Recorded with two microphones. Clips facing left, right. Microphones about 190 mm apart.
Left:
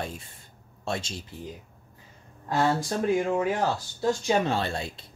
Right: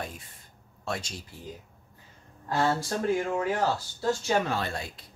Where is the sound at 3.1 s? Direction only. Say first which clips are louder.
Left 3 dB; 15° left (ahead or behind).